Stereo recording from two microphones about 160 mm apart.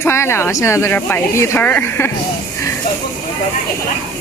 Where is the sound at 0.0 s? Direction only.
15° left (ahead or behind).